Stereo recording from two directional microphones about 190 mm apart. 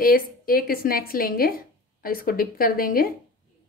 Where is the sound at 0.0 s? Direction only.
50° left (ahead or behind).